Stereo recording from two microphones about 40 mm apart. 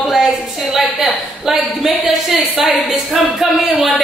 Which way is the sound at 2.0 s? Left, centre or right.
Centre.